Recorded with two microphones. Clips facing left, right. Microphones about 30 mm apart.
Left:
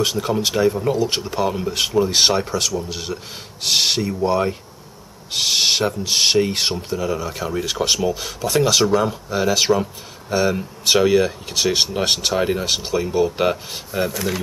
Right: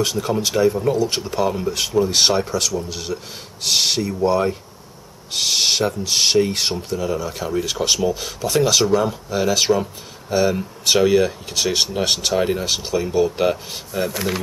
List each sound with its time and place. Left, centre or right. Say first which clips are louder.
0.0 s speech: left 1 dB; centre
14.1 s speech: even; centre